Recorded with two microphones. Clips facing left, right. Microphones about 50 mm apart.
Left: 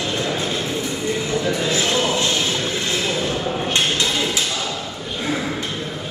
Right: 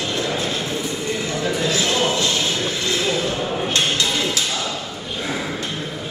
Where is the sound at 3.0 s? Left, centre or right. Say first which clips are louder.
Even; centre.